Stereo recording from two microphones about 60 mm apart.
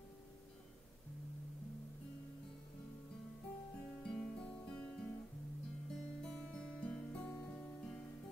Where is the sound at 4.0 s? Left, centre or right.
Centre.